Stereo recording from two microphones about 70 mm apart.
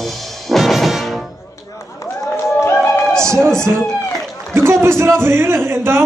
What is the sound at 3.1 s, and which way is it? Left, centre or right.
Music, centre.